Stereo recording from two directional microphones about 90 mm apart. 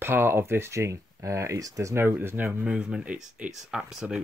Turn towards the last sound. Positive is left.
turn(degrees=-5)  # may be behind; listen again after turning